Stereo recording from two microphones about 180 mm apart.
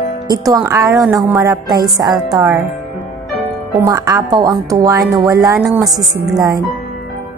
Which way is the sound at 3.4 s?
20° right (ahead or behind).